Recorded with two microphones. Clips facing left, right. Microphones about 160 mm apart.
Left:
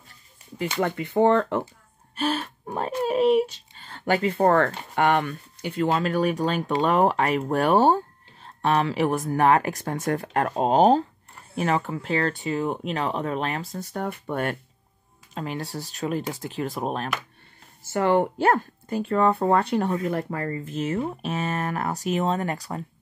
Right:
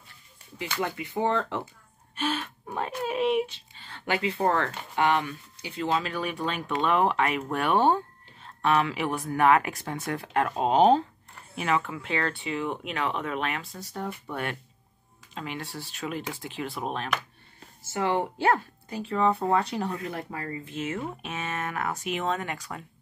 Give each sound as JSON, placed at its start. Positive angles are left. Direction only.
{"t": 0.7, "sound": "speech", "side_deg": 55}
{"t": 2.1, "sound": "speech", "side_deg": 40}
{"t": 13.9, "sound": "speech", "side_deg": 55}
{"t": 17.9, "sound": "speech", "side_deg": 55}